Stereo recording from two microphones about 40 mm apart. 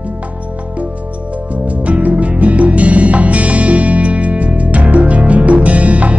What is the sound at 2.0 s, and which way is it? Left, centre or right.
Music, right.